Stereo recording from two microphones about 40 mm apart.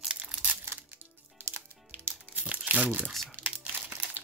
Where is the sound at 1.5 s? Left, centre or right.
Right.